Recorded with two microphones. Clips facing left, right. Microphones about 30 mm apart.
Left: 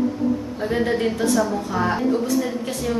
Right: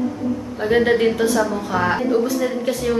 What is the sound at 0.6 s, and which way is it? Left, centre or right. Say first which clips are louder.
A woman's voice: right 6 dB; right.